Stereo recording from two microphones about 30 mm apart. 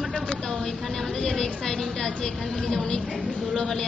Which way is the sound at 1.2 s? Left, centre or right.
Left.